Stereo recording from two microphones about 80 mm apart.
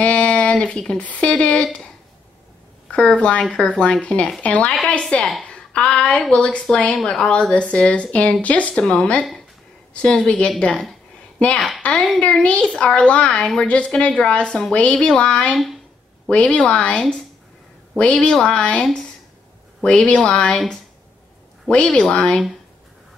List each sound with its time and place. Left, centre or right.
0.0 s speech: centre
2.9 s a child's voice: centre